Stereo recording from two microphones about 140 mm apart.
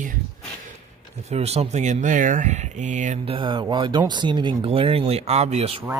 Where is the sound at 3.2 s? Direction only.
35° right (ahead or behind).